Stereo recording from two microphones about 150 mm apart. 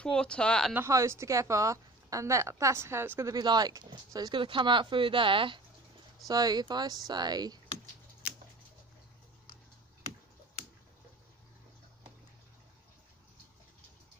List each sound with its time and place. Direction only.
0.0 s speech: 5° left (ahead or behind)
0.7 s speech: 20° right (ahead or behind)